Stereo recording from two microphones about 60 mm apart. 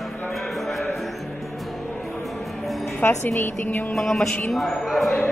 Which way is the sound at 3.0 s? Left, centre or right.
Left.